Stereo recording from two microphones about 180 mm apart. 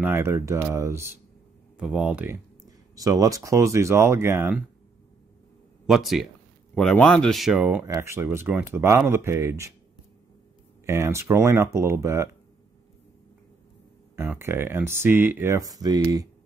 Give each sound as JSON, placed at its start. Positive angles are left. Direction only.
{"t": 0.0, "sound": "speech", "side_deg": -15}
{"t": 1.8, "sound": "speech", "side_deg": -5}
{"t": 3.0, "sound": "speech", "side_deg": -20}
{"t": 5.9, "sound": "speech", "side_deg": 0}
{"t": 10.9, "sound": "speech", "side_deg": -15}
{"t": 14.1, "sound": "speech", "side_deg": -15}